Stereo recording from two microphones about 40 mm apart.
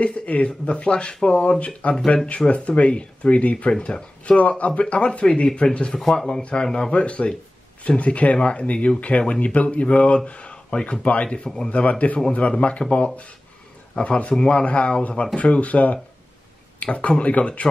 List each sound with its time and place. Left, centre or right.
0.0 s speech: left
6.1 s speech: centre
11.3 s speech: centre
11.7 s speech: left